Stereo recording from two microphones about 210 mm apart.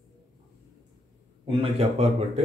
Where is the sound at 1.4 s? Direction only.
30° right (ahead or behind).